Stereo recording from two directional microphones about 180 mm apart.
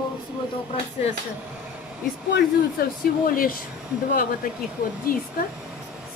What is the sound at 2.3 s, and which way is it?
Speech, 60° left (ahead or behind).